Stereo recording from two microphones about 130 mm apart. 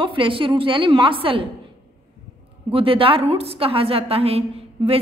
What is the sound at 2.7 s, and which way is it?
A woman's voice, 45° right (ahead or behind).